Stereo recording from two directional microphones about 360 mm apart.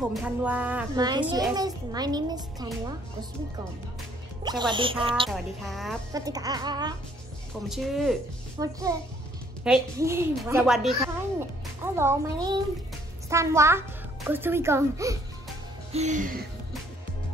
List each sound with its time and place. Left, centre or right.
0.1 s a child's voice: centre
4.4 s a child's voice: centre
5.3 s a child's voice: centre
7.6 s a woman's voice: centre
15.9 s music: centre